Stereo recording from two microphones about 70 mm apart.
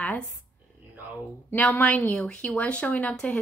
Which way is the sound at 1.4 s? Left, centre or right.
Left.